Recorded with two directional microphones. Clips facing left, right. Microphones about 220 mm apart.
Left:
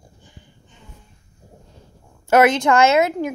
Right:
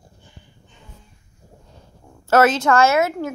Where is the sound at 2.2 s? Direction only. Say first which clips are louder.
Left 1 dB; 15° left (ahead or behind).